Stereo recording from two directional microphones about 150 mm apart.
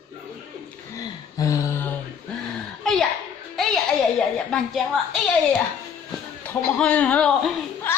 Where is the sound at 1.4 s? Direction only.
20° left (ahead or behind).